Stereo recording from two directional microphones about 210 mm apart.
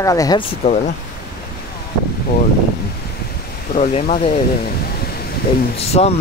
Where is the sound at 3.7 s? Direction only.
40° left (ahead or behind).